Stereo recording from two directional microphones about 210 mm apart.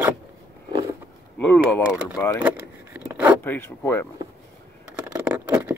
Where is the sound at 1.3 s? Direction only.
5° left (ahead or behind).